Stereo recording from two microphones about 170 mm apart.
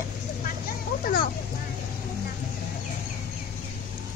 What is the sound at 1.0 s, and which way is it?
Vehicle, 60° left (ahead or behind).